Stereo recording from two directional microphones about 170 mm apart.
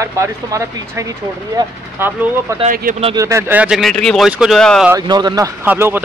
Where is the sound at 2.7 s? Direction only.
55° right (ahead or behind).